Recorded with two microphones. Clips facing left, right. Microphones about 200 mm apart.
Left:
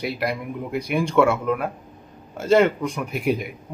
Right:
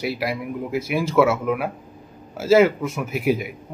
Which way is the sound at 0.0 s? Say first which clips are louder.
Right 1 dB; centre (ahead or behind).